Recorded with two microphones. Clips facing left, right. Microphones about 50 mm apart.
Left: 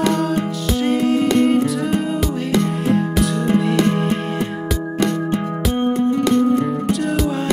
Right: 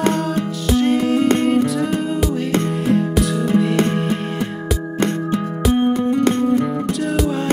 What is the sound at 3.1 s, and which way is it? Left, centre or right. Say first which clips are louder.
Music: even; centre.